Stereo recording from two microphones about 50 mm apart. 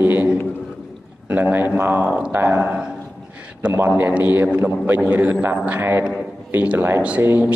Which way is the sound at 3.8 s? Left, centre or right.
Right.